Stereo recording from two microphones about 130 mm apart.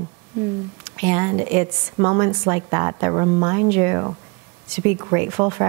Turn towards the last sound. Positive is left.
turn(degrees=-20)  # may be behind; listen again after turning